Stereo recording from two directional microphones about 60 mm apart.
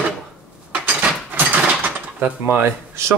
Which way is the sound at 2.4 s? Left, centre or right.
Right.